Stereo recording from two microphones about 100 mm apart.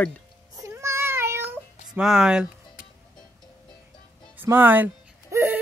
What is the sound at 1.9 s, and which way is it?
Speech, 5° right (ahead or behind).